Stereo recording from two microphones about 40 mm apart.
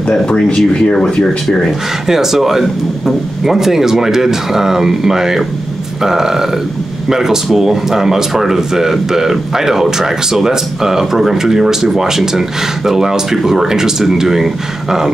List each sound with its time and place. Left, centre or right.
0.1 s speech: left
2.0 s speech: centre